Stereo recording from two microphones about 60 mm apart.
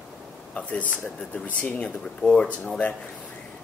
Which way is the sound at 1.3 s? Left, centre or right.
Centre.